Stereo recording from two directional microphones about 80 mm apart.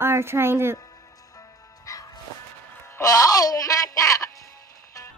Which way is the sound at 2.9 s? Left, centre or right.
Left.